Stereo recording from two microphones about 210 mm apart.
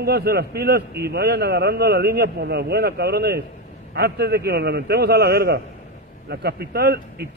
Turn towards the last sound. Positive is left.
turn(degrees=-50)  # may be behind; listen again after turning